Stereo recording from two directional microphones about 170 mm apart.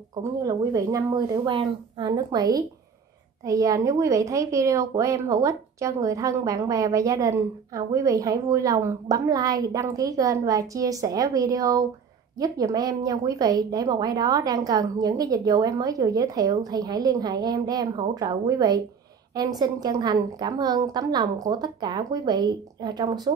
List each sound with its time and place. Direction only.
0.1 s a woman's voice: 20° right (ahead or behind)